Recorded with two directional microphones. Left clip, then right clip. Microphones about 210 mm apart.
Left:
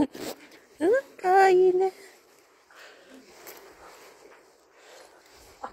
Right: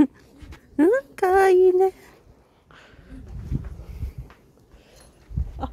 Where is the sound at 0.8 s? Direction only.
30° right (ahead or behind).